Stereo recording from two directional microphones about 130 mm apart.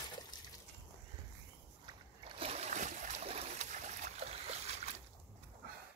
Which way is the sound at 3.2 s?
55° right (ahead or behind).